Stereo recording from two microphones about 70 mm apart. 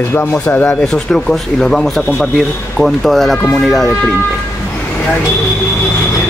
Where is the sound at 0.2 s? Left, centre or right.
Left.